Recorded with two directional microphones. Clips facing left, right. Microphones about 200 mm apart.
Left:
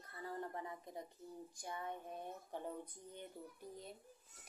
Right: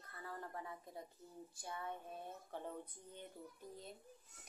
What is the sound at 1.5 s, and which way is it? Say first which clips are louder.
Child singing: even; 15° left (ahead or behind).